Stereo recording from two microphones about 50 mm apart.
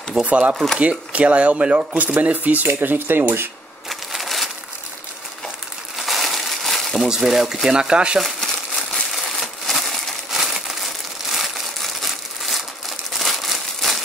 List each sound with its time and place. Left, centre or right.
0.2 s speech: right
3.9 s a sound: centre
5.9 s crushing: centre
7.1 s speech: centre
9.1 s crumpling: centre